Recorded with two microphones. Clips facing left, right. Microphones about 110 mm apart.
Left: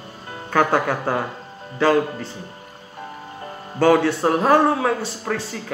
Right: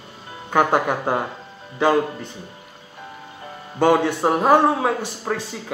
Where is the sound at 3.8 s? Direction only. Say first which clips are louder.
Left 1 dB; 20° right (ahead or behind).